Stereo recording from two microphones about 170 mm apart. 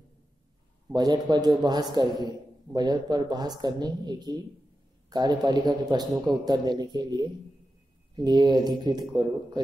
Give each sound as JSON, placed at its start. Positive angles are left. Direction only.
{"t": 0.9, "sound": "a man's voice", "side_deg": -25}